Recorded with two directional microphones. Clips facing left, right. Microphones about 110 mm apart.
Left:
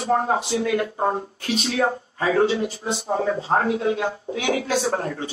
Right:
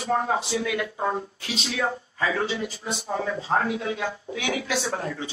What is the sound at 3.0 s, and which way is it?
Speech, 35° left (ahead or behind).